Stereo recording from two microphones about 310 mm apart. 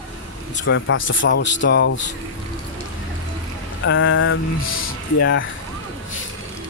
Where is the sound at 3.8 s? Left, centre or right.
Left.